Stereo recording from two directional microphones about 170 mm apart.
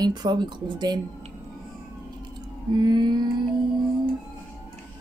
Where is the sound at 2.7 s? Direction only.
25° right (ahead or behind).